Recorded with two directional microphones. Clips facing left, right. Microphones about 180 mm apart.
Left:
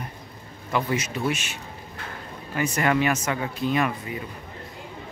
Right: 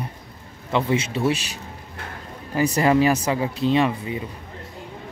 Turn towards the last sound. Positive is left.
turn(degrees=-25)  # may be behind; listen again after turning